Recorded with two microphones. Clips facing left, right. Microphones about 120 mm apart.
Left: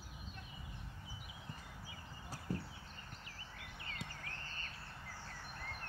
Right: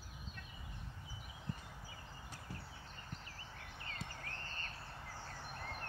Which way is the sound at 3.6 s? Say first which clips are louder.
Even; 35° right (ahead or behind).